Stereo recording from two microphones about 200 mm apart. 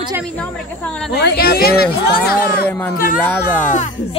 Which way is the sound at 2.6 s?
10° left (ahead or behind).